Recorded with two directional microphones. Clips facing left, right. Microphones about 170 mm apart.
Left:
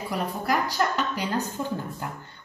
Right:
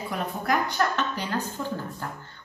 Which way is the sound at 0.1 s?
5° left (ahead or behind).